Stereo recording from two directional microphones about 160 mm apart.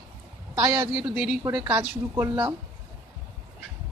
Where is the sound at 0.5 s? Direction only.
20° right (ahead or behind).